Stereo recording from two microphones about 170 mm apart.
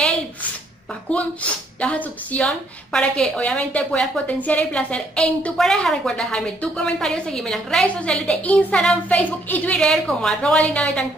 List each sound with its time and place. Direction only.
1.1 s a woman's voice: 10° left (ahead or behind)